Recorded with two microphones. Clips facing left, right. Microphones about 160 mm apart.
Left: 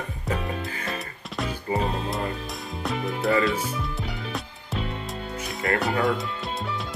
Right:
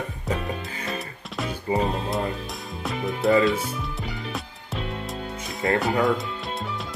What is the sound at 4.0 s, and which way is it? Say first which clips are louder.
Music: even; centre (ahead or behind).